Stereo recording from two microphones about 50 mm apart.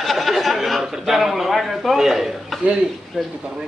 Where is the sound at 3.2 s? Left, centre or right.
Centre.